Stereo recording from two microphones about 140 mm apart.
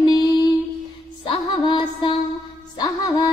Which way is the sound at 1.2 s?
35° left (ahead or behind).